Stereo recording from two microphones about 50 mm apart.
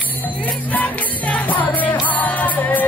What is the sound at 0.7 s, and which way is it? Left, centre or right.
Music, left.